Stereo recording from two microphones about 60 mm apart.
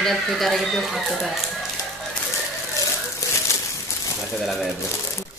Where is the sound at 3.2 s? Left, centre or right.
Left.